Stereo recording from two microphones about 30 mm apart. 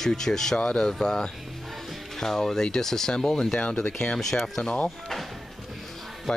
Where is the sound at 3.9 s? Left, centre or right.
Left.